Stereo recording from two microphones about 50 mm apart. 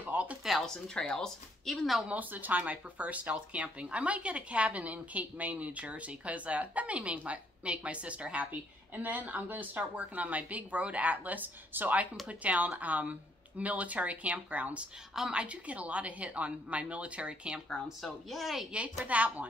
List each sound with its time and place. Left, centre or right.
0.4 s a sound: centre
1.1 s speech: centre
2.0 s speech: right
15.1 s speech: centre
18.0 s a woman's voice: centre
19.0 s speech: right